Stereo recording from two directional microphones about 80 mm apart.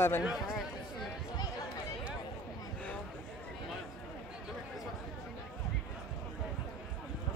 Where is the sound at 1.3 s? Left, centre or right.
Left.